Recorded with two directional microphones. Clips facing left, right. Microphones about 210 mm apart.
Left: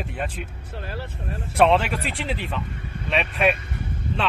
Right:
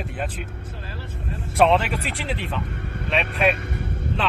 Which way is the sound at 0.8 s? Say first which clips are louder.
Left 5 dB; 65° left (ahead or behind).